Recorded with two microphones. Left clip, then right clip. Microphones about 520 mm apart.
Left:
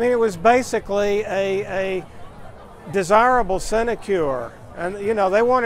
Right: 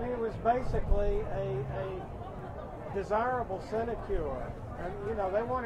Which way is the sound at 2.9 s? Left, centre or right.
Left.